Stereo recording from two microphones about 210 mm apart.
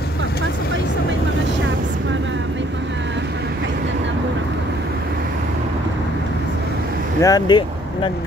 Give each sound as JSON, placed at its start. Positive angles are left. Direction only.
{"t": 7.2, "sound": "speech", "side_deg": 15}